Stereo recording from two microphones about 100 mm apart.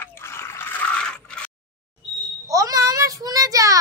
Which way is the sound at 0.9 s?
10° left (ahead or behind).